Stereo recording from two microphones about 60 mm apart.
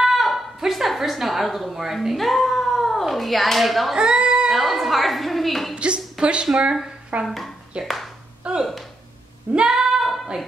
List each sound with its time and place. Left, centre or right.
0.0 s cat: centre
3.9 s a sound: centre
5.8 s a woman's voice: centre
7.2 s speech: centre
8.5 s speech: centre
9.7 s a sound: centre